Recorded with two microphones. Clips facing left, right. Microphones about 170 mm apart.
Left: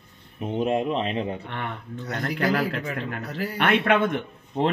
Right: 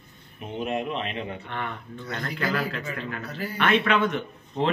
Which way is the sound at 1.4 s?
65° left (ahead or behind).